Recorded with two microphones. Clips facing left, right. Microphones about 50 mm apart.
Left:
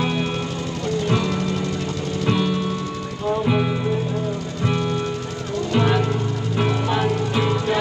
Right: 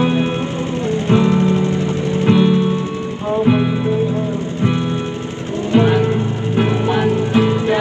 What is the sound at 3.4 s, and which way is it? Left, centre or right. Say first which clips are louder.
Music: right 7 dB; centre.